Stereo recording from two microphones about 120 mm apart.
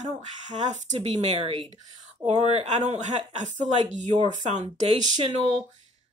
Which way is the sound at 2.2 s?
60° right (ahead or behind).